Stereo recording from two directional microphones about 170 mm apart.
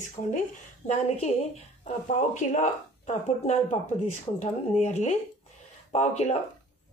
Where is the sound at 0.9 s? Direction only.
40° left (ahead or behind).